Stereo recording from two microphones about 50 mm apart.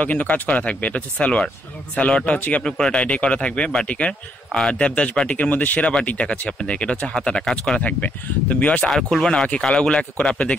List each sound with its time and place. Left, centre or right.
0.0 s speech: left
2.6 s speech: centre
8.8 s speech: centre
9.3 s speech: centre